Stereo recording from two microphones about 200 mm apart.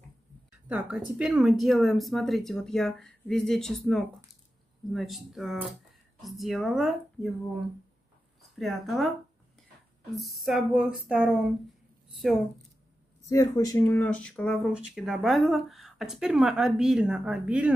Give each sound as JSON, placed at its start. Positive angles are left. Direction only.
{"t": 0.7, "sound": "speech", "side_deg": -5}
{"t": 8.4, "sound": "speech", "side_deg": 0}
{"t": 10.1, "sound": "speech", "side_deg": 0}
{"t": 13.3, "sound": "speech", "side_deg": 15}